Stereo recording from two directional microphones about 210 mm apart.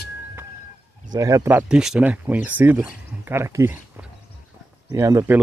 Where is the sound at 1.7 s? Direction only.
5° right (ahead or behind).